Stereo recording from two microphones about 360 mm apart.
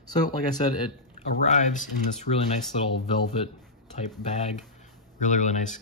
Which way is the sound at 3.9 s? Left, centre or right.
Centre.